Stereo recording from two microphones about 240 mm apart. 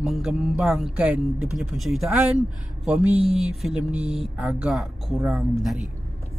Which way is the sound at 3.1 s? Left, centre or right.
Right.